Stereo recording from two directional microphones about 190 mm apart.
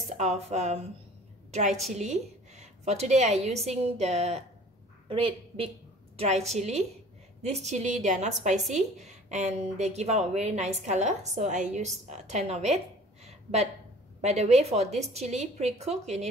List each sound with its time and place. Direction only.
0.2 s a woman's voice: 35° right (ahead or behind)
12.1 s a sound: 35° right (ahead or behind)
14.2 s a woman's voice: 35° right (ahead or behind)